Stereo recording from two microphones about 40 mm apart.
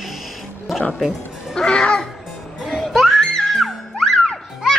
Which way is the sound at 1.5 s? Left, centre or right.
Centre.